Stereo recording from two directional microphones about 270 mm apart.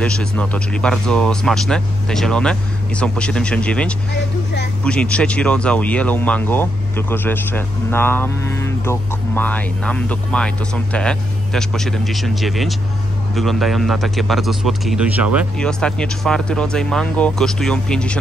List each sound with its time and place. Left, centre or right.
0.0 s speech: centre
4.1 s vehicle: left
4.8 s speech: centre